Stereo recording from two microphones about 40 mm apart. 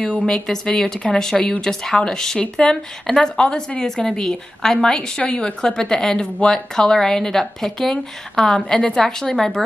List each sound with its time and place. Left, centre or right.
0.3 s speech: centre